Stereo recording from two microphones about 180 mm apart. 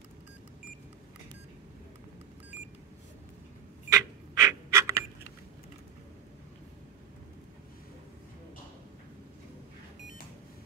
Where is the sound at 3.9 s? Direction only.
15° right (ahead or behind).